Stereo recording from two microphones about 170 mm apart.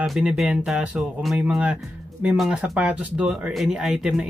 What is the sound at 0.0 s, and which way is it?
Speech, 5° right (ahead or behind).